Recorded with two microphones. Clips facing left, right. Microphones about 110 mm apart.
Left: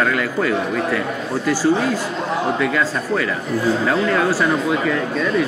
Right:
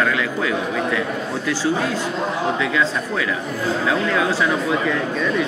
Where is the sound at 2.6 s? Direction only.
Centre (ahead or behind).